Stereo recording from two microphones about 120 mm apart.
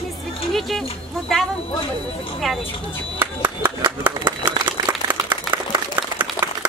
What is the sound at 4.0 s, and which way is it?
Speech, 15° right (ahead or behind).